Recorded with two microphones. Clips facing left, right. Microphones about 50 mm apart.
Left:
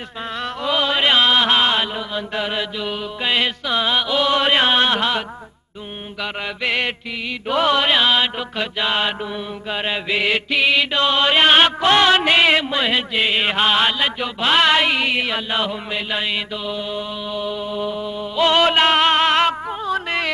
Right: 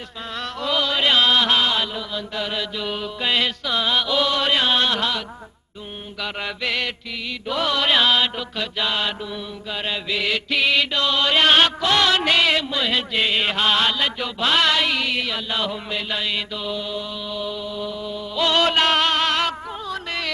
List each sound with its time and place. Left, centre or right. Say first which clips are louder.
0.3 s music: left 2 dB; centre
1.7 s chant: left 3 dB; left
2.8 s mantra: left 1 dB; centre
4.3 s mantra: left 4 dB; left
6.2 s mantra: left 2 dB; centre
7.4 s music: left 6 dB; left
7.8 s mantra: left 1 dB; centre
10.5 s mantra: left 1 dB; centre
10.9 s mantra: left 3 dB; left
13.1 s mantra: left 2 dB; centre
15.7 s mantra: left 2 dB; centre
19.8 s music: left 7 dB; left